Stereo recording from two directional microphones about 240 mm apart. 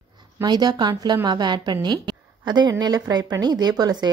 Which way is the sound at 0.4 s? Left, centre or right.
Centre.